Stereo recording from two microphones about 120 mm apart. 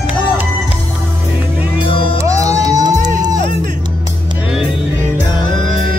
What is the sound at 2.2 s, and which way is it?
Music, 25° right (ahead or behind).